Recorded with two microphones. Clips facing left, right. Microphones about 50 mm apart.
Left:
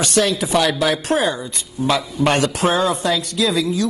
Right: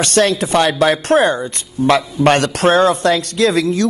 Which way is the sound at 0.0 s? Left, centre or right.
Right.